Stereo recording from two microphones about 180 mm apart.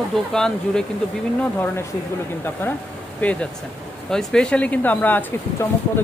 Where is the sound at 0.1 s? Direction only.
5° left (ahead or behind).